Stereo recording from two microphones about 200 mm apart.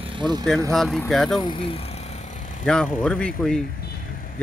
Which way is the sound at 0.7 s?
Centre (ahead or behind).